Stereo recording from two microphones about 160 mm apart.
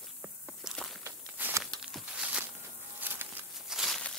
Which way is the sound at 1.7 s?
5° right (ahead or behind).